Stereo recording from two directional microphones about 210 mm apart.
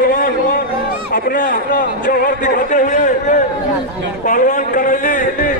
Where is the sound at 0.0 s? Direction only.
40° left (ahead or behind).